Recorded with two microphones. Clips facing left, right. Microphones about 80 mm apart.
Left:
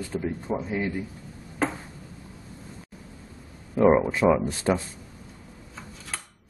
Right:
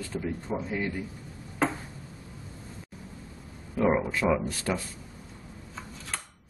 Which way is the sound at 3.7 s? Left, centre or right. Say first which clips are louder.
Left 6 dB; left.